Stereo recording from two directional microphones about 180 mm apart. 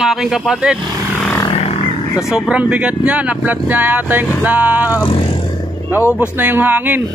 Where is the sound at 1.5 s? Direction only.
35° left (ahead or behind).